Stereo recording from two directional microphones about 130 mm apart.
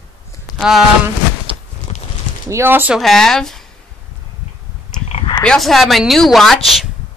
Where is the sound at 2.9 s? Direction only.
5° left (ahead or behind).